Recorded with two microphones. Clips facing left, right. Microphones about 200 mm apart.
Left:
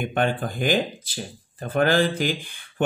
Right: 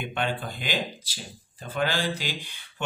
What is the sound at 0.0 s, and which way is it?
Speech, 45° left (ahead or behind).